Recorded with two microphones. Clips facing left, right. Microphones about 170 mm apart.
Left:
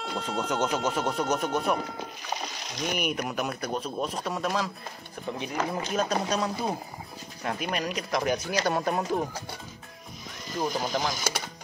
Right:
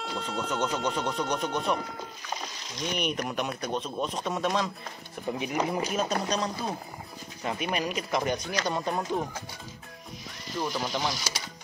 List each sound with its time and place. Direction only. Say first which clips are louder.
0.0 s speech: left 2 dB; centre (ahead or behind)
3.0 s speech: right 1 dB; 5° left (ahead or behind)
5.4 s speech: right 2 dB; 10° right (ahead or behind); by 9.0 s 10° left (ahead or behind)
10.6 s speech: left 2 dB; 45° left (ahead or behind)